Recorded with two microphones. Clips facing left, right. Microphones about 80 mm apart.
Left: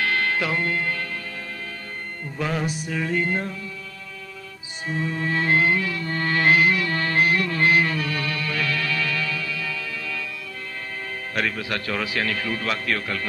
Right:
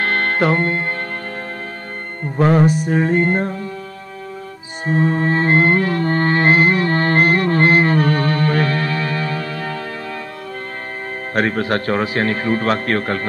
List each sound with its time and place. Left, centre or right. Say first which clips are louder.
0.0 s music: right 6 dB; right
2.2 s speech: right 12 dB; right
4.8 s music: right 9 dB; right
11.3 s speech: right 9 dB; right